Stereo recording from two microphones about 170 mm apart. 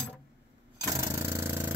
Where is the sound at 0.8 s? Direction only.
15° right (ahead or behind).